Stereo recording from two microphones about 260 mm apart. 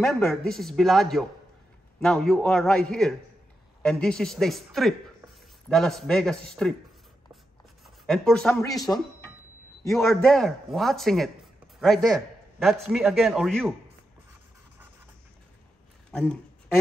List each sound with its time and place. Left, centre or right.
0.0 s a man's voice: centre
7.8 s a man's voice: centre
16.1 s speech: centre